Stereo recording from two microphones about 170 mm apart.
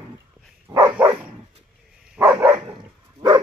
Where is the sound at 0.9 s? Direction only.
10° right (ahead or behind).